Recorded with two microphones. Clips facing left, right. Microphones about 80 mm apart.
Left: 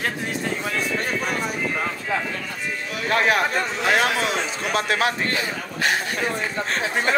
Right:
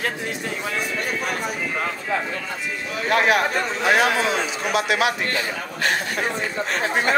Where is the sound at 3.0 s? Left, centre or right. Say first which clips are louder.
Right 1 dB; right.